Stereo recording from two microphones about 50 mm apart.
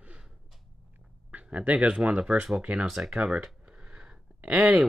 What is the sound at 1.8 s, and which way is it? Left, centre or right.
Speech, right.